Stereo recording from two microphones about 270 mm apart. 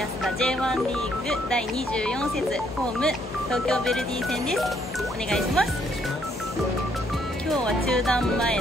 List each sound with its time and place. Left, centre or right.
0.2 s speech: centre
3.0 s speech: centre
7.6 s speech: centre